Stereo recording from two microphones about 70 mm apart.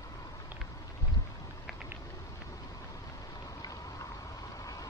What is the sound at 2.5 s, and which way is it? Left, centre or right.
Vehicle, left.